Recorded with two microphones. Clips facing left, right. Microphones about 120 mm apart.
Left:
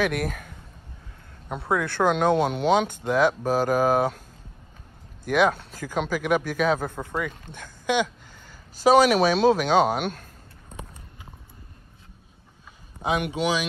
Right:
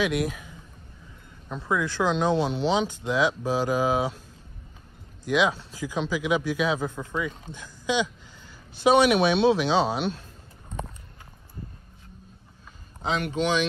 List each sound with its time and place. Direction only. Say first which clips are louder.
0.0 s speech: even; 50° left (ahead or behind)
1.6 s speech: left 2 dB; 60° left (ahead or behind)
5.2 s speech: left 2 dB; 55° left (ahead or behind)
8.7 s speech: left 2 dB; 40° left (ahead or behind)
13.2 s speech: even; 10° left (ahead or behind)